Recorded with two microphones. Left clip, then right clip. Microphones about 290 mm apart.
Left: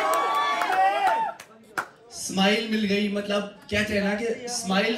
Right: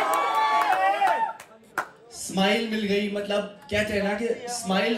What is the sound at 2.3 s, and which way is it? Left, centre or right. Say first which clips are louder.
A man's voice: even; centre.